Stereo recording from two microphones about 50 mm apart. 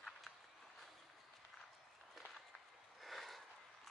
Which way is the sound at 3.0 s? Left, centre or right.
Centre.